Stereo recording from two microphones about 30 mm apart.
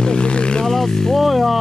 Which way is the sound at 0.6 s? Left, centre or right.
Centre.